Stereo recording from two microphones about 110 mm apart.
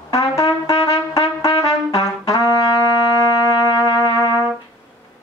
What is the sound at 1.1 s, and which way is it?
Trumpet, 30° left (ahead or behind).